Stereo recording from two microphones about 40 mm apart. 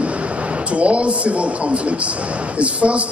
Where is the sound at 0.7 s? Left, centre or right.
Right.